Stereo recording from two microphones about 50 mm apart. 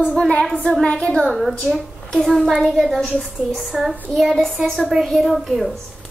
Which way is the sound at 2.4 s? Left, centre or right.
Centre.